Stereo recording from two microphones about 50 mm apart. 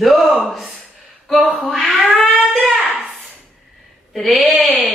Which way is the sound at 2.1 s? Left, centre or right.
Centre.